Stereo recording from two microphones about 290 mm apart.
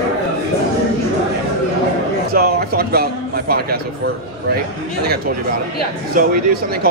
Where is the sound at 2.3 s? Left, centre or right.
Right.